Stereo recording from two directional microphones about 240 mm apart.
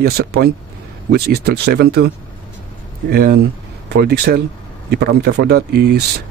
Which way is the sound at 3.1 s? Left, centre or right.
Right.